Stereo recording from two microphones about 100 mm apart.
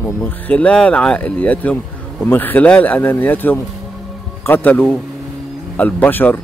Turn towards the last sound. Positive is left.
turn(degrees=20)  # may be behind; listen again after turning